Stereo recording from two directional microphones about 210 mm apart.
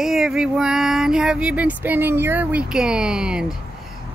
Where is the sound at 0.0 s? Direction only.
Centre (ahead or behind).